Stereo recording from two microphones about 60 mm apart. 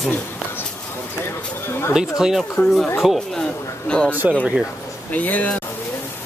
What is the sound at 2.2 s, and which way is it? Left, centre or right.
Speech, centre.